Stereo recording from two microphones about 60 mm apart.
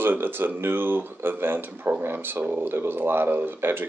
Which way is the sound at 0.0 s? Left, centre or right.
Right.